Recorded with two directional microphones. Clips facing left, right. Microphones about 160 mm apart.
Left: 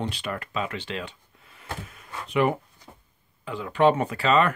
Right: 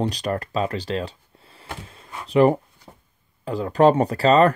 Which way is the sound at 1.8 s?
30° right (ahead or behind).